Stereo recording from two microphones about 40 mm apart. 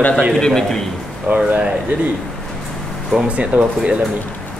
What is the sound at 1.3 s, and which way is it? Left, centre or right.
Speech, right.